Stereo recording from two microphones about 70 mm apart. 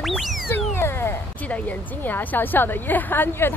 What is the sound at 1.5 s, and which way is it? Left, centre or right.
Speech, left.